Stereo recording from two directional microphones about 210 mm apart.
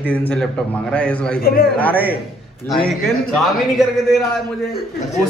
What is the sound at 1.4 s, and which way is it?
Speech, 45° left (ahead or behind).